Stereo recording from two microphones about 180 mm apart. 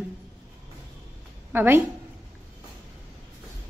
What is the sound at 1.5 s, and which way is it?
Speech, 10° right (ahead or behind).